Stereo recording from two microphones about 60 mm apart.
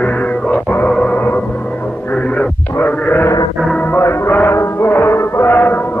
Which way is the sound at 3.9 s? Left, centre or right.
Left.